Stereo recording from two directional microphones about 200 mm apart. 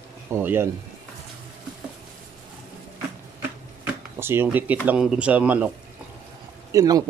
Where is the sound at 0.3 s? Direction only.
10° right (ahead or behind).